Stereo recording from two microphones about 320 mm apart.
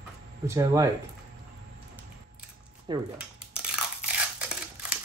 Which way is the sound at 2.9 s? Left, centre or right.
Centre.